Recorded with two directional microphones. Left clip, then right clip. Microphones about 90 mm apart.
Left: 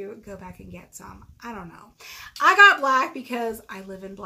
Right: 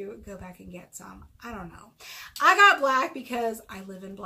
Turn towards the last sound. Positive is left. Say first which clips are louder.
# left 4 dB
turn(degrees=35)  # may be behind; listen again after turning